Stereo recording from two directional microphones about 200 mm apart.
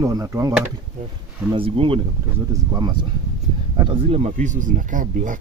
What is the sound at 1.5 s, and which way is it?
Speech, 25° right (ahead or behind).